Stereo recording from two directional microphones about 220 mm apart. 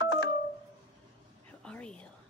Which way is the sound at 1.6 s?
5° left (ahead or behind).